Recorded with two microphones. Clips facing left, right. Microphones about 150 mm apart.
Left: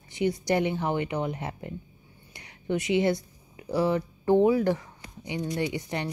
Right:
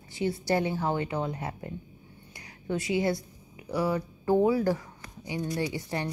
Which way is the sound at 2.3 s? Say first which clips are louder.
Left 3 dB; 20° left (ahead or behind).